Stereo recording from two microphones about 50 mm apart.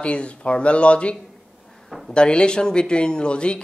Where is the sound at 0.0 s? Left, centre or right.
Left.